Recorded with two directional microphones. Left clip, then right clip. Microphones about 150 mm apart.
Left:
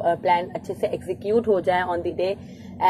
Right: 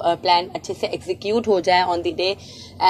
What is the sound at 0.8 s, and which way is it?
Speech, 20° right (ahead or behind).